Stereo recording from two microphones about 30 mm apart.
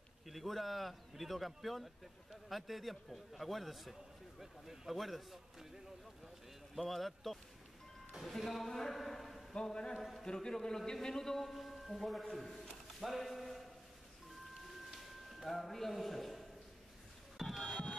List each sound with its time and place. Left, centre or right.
0.3 s a man's voice: centre
6.8 s a man's voice: centre
8.5 s a man's voice: centre
10.2 s a man's voice: left
11.5 s a man's voice: centre
14.5 s a sound: centre